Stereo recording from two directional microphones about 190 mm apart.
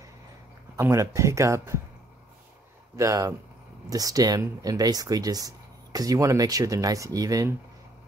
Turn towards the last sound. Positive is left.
turn(degrees=-15)  # may be behind; listen again after turning